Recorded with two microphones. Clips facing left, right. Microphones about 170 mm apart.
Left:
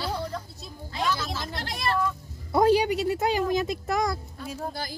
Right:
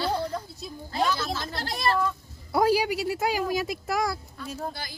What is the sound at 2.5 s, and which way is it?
Speech, 5° right (ahead or behind).